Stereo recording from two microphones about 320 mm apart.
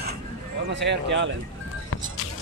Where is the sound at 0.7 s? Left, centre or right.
Right.